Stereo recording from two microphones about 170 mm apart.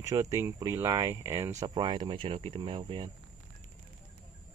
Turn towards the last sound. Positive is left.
turn(degrees=-30)  # may be behind; listen again after turning